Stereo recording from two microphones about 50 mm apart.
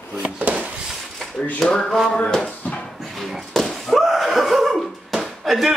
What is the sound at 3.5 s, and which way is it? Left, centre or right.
Slap, centre.